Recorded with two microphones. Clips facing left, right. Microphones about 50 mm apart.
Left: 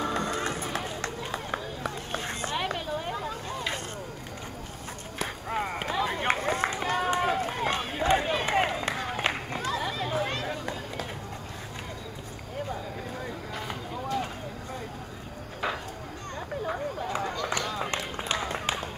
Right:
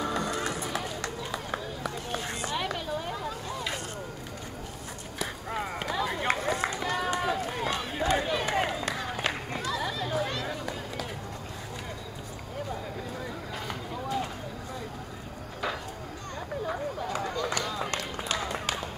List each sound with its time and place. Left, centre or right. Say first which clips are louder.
0.0 s run: left 1 dB; left
5.2 s a sound: left 2 dB; left
5.9 s run: left 1 dB; left
17.0 s run: even; left